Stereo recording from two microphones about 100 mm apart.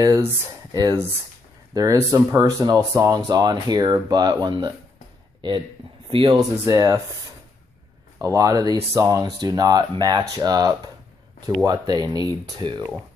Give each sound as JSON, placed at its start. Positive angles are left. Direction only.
{"t": 0.0, "sound": "speech", "side_deg": -35}
{"t": 1.7, "sound": "speech", "side_deg": -35}
{"t": 6.0, "sound": "speech", "side_deg": -60}
{"t": 6.6, "sound": "speech", "side_deg": -35}
{"t": 8.2, "sound": "speech", "side_deg": -35}